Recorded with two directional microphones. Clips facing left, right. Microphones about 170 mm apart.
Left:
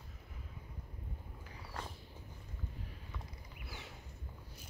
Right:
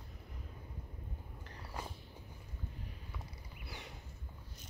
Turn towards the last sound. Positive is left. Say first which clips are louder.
# right 1 dB
turn(degrees=0)  # may be behind; listen again after turning